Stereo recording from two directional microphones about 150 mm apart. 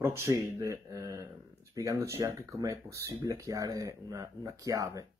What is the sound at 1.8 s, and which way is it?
Speech, 20° right (ahead or behind).